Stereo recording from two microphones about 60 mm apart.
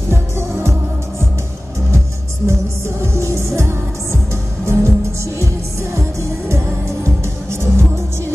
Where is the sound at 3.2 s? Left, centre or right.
Right.